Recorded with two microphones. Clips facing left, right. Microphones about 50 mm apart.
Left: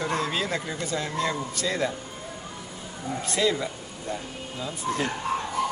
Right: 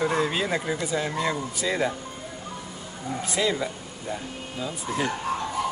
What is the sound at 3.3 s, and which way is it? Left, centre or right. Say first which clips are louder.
Speech: left 1 dB; centre.